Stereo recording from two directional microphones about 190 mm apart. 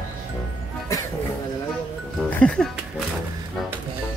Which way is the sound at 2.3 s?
5° left (ahead or behind).